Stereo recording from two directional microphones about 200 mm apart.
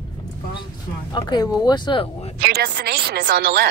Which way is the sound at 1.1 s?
20° left (ahead or behind).